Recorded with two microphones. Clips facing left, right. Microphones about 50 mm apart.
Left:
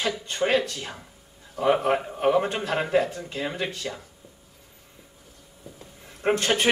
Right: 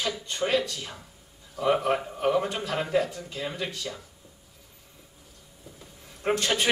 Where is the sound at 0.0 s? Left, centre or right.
Left.